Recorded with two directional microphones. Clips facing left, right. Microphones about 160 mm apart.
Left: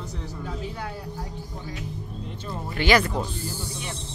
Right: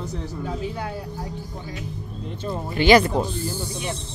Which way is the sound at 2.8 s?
20° right (ahead or behind).